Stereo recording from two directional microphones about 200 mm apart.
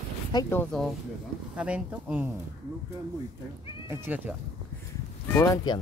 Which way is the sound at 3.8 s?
10° right (ahead or behind).